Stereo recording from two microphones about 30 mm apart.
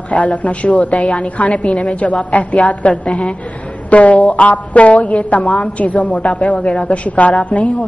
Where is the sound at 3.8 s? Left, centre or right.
Left.